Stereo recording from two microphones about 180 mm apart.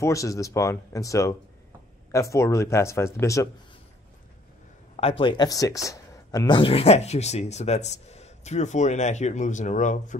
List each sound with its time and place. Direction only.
0.0 s speech: 20° left (ahead or behind)
4.9 s speech: 30° left (ahead or behind)